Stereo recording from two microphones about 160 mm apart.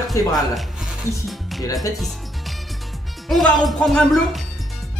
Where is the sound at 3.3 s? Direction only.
Centre (ahead or behind).